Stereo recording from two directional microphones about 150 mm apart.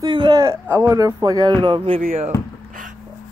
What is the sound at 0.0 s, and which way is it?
Speech, 30° right (ahead or behind).